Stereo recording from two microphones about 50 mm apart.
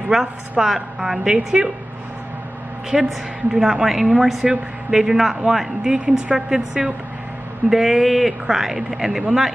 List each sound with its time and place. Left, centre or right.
0.1 s speech: centre
2.9 s a woman's voice: centre